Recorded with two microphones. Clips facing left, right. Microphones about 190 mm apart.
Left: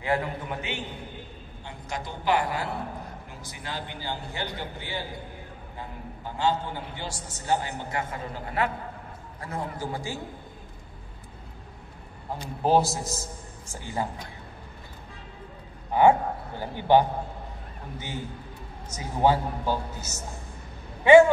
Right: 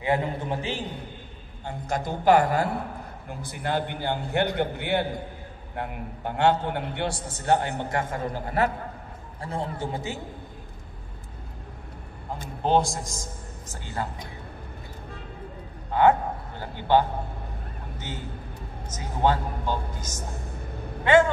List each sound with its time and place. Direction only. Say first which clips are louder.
0.0 s a man's voice: right 2 dB; 20° right (ahead or behind)
1.6 s a woman's voice: right 6 dB; 50° right (ahead or behind)
9.4 s a man's voice: right 2 dB; 30° right (ahead or behind)
12.6 s a man's voice: left 1 dB; 5° left (ahead or behind)
15.9 s a man's voice: left 1 dB; 10° left (ahead or behind)